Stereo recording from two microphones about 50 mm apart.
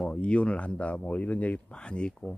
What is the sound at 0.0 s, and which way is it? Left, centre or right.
Speech, left.